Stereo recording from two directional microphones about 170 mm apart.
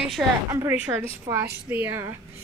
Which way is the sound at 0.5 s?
15° right (ahead or behind).